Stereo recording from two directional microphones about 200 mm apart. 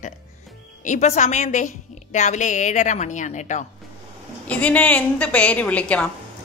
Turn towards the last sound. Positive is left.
turn(degrees=5)  # may be behind; listen again after turning